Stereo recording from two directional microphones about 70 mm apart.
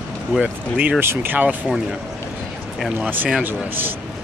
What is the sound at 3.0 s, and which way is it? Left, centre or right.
Speech, right.